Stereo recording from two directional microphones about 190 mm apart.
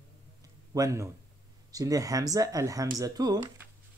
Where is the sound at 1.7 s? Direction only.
20° right (ahead or behind).